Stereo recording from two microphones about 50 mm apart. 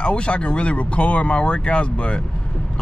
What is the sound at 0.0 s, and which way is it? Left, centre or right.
Speech, left.